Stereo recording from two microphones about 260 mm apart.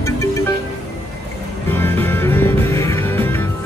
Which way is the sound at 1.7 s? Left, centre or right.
Centre.